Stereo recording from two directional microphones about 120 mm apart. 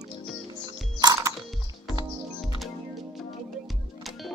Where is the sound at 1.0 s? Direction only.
30° right (ahead or behind).